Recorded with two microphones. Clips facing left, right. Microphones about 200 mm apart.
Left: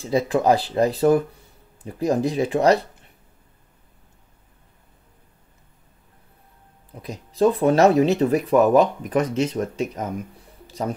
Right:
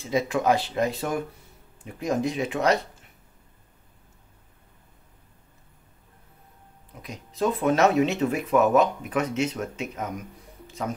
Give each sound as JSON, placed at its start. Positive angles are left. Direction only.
{"t": 0.0, "sound": "speech", "side_deg": 35}
{"t": 7.0, "sound": "speech", "side_deg": 35}